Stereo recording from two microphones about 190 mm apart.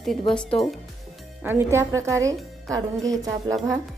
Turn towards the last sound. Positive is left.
turn(degrees=-20)  # may be behind; listen again after turning